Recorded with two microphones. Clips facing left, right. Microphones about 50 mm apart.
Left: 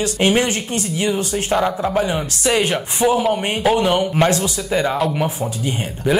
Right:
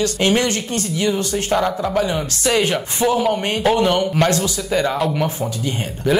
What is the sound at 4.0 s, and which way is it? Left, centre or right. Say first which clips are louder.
Speech: left 1 dB; centre.